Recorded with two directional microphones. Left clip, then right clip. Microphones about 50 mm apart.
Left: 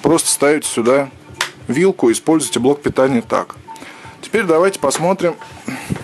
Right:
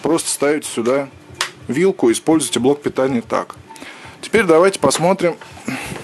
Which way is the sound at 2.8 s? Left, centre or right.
Centre.